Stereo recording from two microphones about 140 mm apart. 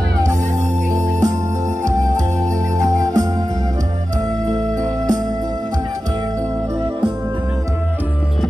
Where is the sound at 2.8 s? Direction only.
60° right (ahead or behind).